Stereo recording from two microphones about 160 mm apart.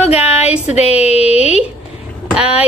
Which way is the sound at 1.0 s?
40° left (ahead or behind).